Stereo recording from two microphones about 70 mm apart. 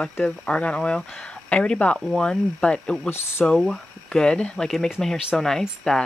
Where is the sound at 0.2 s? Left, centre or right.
Centre.